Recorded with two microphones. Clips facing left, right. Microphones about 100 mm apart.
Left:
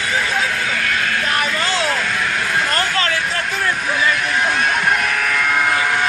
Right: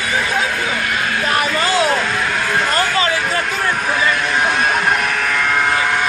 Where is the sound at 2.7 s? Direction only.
10° right (ahead or behind).